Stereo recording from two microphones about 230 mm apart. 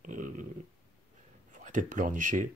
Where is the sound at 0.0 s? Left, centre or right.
Right.